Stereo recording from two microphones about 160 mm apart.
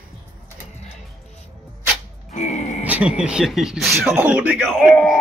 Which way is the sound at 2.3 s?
45° left (ahead or behind).